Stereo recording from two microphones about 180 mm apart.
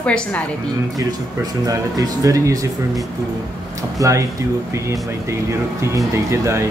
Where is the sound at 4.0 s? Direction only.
20° right (ahead or behind).